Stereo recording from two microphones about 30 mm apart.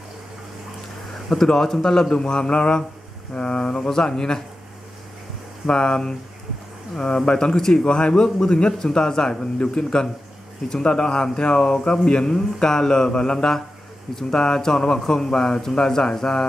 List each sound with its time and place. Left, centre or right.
1.3 s speech: centre; by 3.7 s left
3.7 s speech: left
5.7 s speech: left